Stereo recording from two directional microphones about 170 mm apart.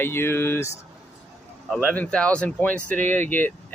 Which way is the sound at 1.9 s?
5° left (ahead or behind).